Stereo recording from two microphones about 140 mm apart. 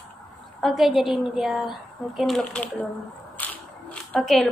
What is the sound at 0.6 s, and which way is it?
Speech, centre (ahead or behind).